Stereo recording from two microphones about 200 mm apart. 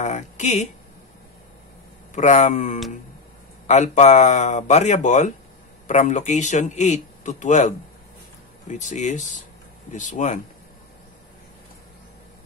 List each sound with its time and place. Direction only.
0.0 s a man's voice: 35° left (ahead or behind)
2.1 s a man's voice: 35° left (ahead or behind)